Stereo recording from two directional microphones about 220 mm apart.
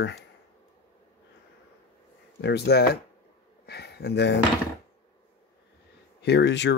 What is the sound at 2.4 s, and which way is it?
Speech, 50° left (ahead or behind).